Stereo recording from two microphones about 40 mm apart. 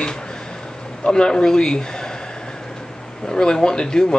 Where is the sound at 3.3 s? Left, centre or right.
Centre.